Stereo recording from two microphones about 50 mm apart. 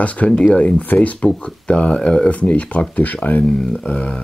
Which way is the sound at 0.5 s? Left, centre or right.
Left.